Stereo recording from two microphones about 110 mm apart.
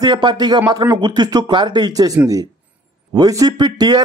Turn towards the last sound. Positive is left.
turn(degrees=-40)  # may be behind; listen again after turning